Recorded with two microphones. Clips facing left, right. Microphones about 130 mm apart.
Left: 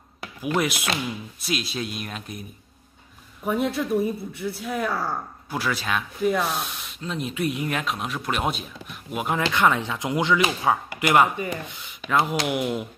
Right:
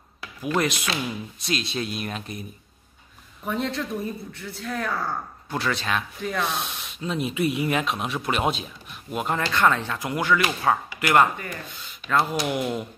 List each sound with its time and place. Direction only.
1.4 s speech: 5° left (ahead or behind)
3.4 s speech: 10° left (ahead or behind)